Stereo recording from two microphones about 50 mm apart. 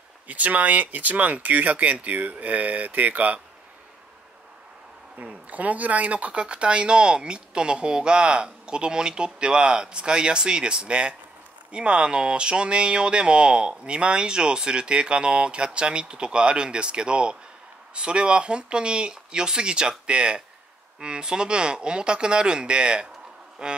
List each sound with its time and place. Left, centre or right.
0.3 s speech: right
5.1 s speech: right